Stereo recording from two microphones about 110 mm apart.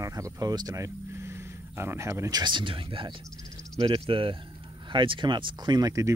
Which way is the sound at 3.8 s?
55° right (ahead or behind).